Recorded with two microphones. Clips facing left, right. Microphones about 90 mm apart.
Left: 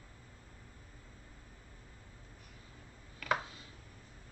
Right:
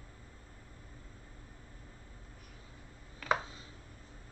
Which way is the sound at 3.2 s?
30° right (ahead or behind).